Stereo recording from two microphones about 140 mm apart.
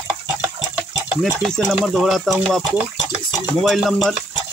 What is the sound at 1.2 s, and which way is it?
Speech, 5° left (ahead or behind).